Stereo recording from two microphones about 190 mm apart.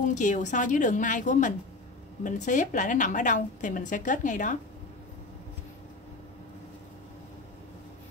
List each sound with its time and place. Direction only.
0.0 s a woman's voice: 40° left (ahead or behind)